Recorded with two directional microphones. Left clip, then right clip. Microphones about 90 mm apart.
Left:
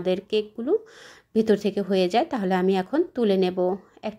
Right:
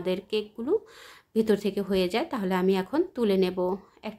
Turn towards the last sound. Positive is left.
turn(degrees=25)  # may be behind; listen again after turning